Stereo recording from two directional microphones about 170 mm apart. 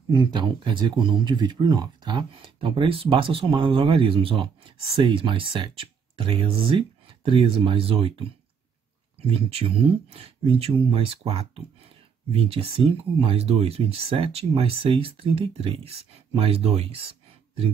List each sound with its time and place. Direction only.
0.1 s speech: 25° right (ahead or behind)
9.3 s speech: 35° right (ahead or behind)